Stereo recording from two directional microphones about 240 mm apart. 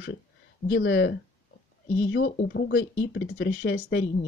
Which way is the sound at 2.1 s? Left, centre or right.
Left.